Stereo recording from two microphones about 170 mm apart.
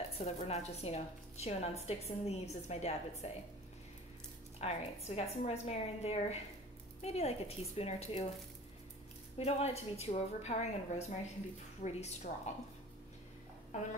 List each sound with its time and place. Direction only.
0.2 s a woman's voice: 40° left (ahead or behind)
4.6 s a woman's voice: 40° left (ahead or behind)
9.4 s a woman's voice: 40° left (ahead or behind)